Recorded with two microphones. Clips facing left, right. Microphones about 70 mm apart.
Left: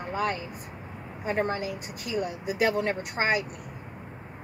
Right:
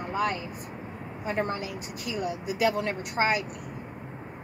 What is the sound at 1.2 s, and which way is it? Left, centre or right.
Speech, left.